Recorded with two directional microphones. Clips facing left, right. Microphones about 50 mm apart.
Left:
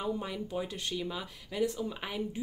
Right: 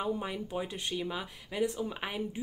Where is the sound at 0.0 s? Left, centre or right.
Right.